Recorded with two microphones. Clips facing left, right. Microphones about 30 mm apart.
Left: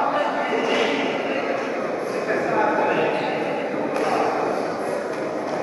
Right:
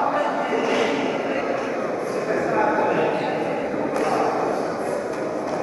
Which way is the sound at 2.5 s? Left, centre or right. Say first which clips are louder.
Even; centre.